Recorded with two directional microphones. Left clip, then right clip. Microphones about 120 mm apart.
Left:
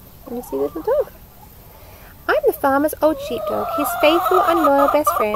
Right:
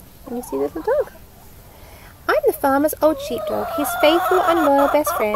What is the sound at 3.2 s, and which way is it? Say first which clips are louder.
Speech: left 1 dB; 70° right (ahead or behind).